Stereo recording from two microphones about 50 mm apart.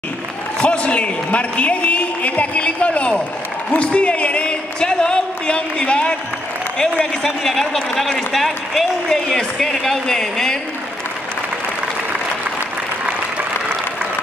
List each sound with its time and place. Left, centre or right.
0.6 s a man's voice: left